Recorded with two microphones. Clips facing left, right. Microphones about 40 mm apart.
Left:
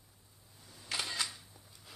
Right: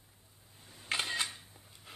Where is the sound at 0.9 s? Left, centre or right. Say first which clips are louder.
Right 3 dB; right.